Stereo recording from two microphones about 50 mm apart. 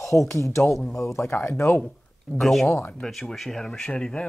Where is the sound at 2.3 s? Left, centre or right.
Centre.